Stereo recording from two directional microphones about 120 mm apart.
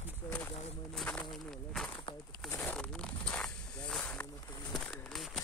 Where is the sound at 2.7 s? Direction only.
5° left (ahead or behind).